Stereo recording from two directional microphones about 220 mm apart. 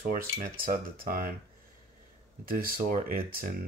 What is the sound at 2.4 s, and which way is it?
Speech, 40° right (ahead or behind).